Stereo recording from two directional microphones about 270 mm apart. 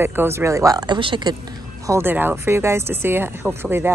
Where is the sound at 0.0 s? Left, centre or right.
Centre.